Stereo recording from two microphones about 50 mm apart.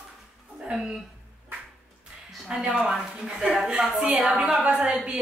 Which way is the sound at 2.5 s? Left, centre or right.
Centre.